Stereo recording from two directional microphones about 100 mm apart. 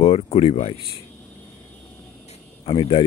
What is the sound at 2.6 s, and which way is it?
Speech, 55° left (ahead or behind).